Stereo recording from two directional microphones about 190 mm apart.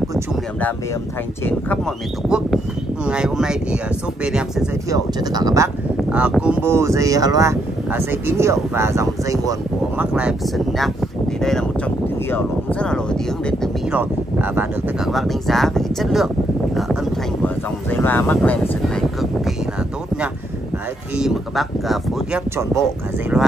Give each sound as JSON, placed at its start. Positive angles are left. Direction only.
{"t": 1.4, "sound": "speech", "side_deg": 5}
{"t": 2.2, "sound": "speech", "side_deg": -5}
{"t": 4.8, "sound": "speech", "side_deg": -20}
{"t": 6.0, "sound": "speech", "side_deg": -5}
{"t": 10.1, "sound": "speech", "side_deg": -5}
{"t": 13.9, "sound": "speech", "side_deg": -10}
{"t": 16.7, "sound": "a sound", "side_deg": 0}
{"t": 17.8, "sound": "speech", "side_deg": 10}
{"t": 21.2, "sound": "speech", "side_deg": 0}